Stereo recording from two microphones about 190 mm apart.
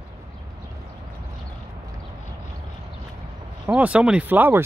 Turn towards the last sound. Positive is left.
turn(degrees=-10)  # may be behind; listen again after turning